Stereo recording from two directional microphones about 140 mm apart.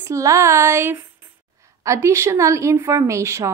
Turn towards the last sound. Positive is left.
turn(degrees=-20)  # may be behind; listen again after turning